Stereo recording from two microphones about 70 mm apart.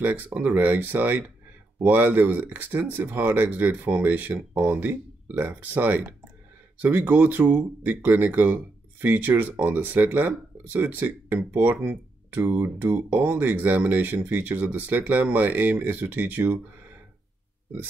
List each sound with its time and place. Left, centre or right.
0.0 s speech: right